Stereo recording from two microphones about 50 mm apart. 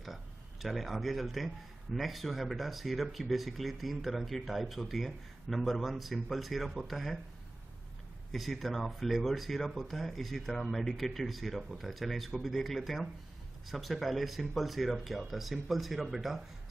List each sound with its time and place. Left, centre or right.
0.0 s a sound: centre
2.0 s speech: centre
8.3 s speech: centre